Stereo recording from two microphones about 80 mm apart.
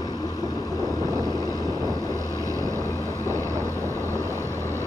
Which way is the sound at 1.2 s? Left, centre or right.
Left.